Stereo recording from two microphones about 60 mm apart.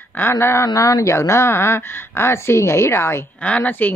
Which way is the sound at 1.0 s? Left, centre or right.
Left.